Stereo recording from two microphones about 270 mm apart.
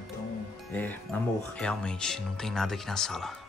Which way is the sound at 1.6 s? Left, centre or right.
Centre.